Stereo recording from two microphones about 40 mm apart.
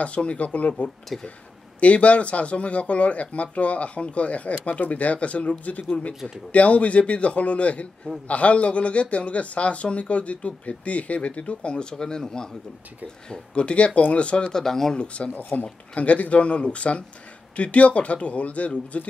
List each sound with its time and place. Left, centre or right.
0.0 s speech: left
14.5 s speech: centre
15.0 s speech: left
15.6 s speech: left